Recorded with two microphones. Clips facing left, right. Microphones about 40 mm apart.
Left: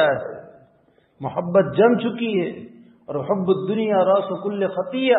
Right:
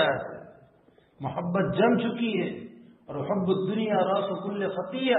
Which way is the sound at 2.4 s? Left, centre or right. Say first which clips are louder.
Left 5 dB; centre.